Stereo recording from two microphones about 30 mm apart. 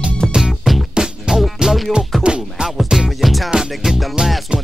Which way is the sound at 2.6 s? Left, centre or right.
Centre.